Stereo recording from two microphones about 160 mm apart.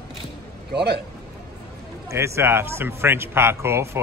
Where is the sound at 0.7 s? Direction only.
90° right.